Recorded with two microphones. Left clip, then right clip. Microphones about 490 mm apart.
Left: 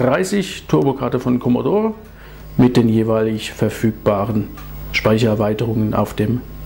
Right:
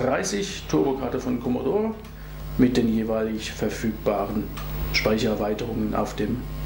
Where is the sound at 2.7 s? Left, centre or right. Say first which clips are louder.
Left 8 dB; left.